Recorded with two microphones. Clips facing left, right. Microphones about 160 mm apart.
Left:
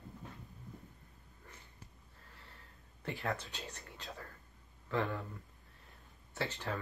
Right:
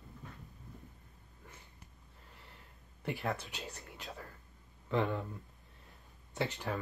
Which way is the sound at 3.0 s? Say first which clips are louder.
Right 2 dB; 10° right (ahead or behind).